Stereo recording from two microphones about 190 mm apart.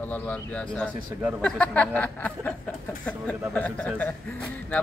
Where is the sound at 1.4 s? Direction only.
5° left (ahead or behind).